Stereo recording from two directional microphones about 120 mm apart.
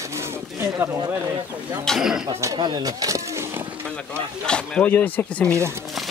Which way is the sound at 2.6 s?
35° right (ahead or behind).